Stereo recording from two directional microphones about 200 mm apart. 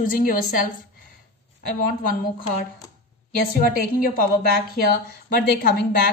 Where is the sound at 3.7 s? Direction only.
45° left (ahead or behind).